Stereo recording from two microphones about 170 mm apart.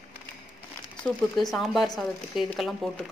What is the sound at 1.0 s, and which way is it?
Speech, centre (ahead or behind).